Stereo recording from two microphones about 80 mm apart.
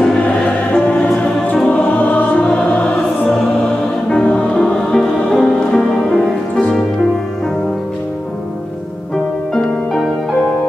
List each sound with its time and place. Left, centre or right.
0.7 s music: centre
4.1 s music: centre